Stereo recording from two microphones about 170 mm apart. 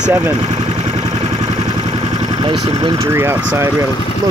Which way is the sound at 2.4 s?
30° right (ahead or behind).